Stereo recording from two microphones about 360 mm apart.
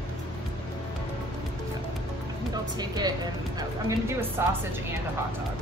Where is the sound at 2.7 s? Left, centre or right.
Centre.